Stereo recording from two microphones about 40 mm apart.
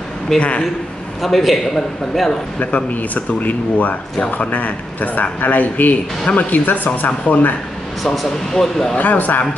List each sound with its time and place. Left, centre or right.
0.4 s speech: left
1.2 s a man's voice: centre
2.6 s speech: left
8.0 s speech: centre
8.9 s speech: left